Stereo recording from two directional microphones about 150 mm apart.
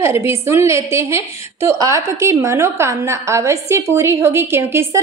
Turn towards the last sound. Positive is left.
turn(degrees=-15)  # may be behind; listen again after turning